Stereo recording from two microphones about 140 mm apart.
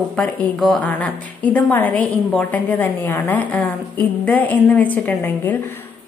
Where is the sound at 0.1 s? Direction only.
10° left (ahead or behind).